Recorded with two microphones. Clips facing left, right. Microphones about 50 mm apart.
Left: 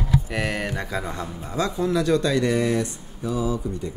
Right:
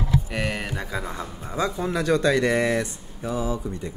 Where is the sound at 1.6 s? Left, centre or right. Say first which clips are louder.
Left 2 dB; centre.